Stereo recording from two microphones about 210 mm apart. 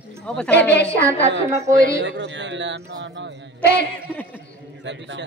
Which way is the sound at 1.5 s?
15° right (ahead or behind).